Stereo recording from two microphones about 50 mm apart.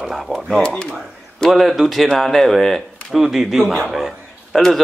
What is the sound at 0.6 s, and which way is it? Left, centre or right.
Speech, centre.